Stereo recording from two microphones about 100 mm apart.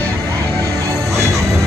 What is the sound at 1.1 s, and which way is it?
Music, 30° right (ahead or behind).